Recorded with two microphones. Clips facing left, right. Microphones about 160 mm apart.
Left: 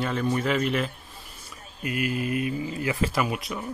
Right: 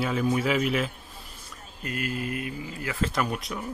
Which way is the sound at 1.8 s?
15° left (ahead or behind).